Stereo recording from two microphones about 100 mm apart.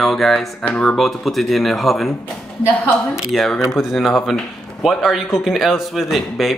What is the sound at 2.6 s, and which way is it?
Speech, 15° left (ahead or behind).